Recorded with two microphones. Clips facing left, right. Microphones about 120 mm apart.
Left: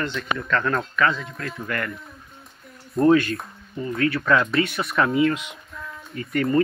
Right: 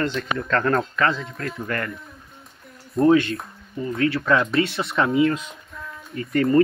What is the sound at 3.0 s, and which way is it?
Speech, 25° right (ahead or behind).